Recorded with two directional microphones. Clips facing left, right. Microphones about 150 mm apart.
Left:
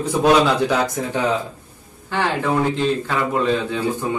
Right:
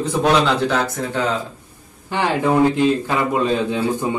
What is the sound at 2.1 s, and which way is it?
Speech, 15° right (ahead or behind).